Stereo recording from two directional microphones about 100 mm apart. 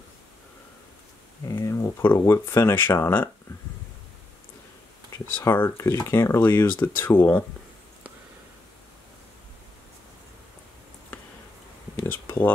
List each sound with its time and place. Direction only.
1.5 s speech: 30° left (ahead or behind)
5.1 s speech: 25° left (ahead or behind)
12.0 s a sound: 20° left (ahead or behind)